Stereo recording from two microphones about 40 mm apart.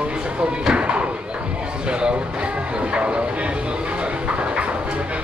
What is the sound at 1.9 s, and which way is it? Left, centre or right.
Speech, right.